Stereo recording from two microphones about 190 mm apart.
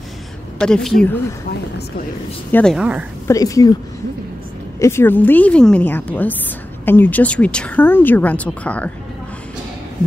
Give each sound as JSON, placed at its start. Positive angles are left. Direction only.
{"t": 0.6, "sound": "a woman's voice", "side_deg": 5}
{"t": 2.5, "sound": "a woman's voice", "side_deg": 0}
{"t": 3.3, "sound": "speech", "side_deg": 15}
{"t": 4.7, "sound": "speech", "side_deg": 15}